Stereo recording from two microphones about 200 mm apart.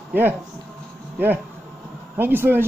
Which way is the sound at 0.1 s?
10° right (ahead or behind).